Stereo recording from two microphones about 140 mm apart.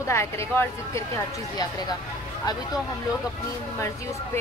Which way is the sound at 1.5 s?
30° left (ahead or behind).